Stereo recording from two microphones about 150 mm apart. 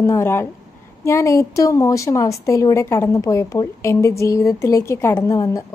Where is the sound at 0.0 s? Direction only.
15° left (ahead or behind).